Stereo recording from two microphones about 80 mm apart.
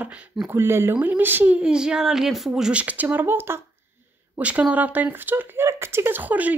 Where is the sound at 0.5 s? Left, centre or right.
Right.